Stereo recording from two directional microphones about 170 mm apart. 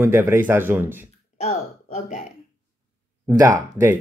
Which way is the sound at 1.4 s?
40° left (ahead or behind).